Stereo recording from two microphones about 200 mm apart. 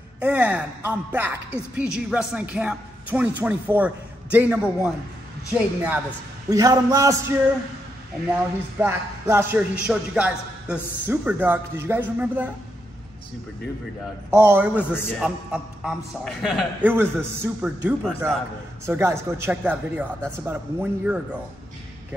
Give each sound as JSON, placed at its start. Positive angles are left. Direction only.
{"t": 0.2, "sound": "speech", "side_deg": -5}
{"t": 6.5, "sound": "speech", "side_deg": -20}
{"t": 14.5, "sound": "speech", "side_deg": -5}
{"t": 14.8, "sound": "a man's voice", "side_deg": 10}
{"t": 15.0, "sound": "a man's voice", "side_deg": -5}
{"t": 18.9, "sound": "speech", "side_deg": -15}